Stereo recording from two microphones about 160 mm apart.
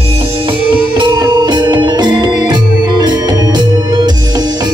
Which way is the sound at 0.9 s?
30° right (ahead or behind).